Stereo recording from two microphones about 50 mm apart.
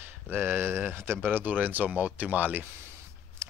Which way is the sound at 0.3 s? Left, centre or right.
Right.